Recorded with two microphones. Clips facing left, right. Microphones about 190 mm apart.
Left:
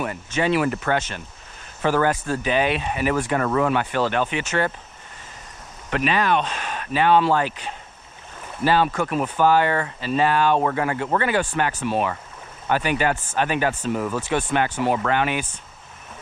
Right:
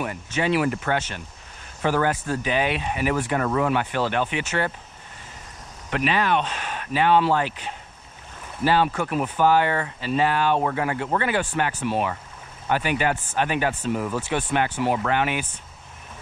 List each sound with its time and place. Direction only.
0.0 s speech: 15° right (ahead or behind)
5.9 s speech: 15° right (ahead or behind)
8.6 s speech: 15° right (ahead or behind)